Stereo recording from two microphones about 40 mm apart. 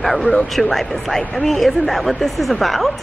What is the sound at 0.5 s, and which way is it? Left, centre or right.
Speech, centre.